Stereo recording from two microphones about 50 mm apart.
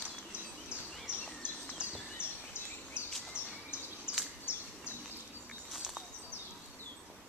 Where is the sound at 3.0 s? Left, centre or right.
Left.